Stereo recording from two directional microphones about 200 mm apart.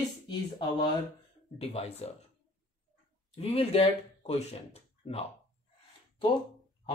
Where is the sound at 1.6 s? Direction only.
30° left (ahead or behind).